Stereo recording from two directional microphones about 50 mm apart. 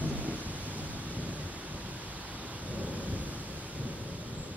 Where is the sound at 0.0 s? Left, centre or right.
Right.